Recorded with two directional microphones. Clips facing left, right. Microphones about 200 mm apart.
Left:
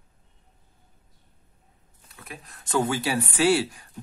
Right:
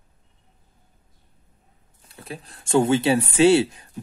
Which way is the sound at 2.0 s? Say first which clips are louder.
Right 6 dB; 30° right (ahead or behind).